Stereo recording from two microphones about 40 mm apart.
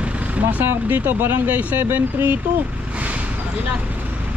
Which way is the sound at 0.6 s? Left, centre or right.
Right.